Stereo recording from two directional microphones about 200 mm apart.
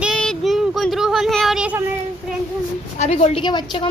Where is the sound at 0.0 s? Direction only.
Centre (ahead or behind).